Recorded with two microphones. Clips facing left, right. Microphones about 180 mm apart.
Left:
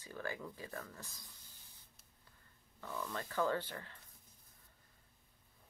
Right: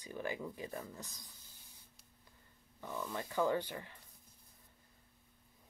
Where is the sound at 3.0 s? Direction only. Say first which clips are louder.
Right 2 dB; 15° right (ahead or behind).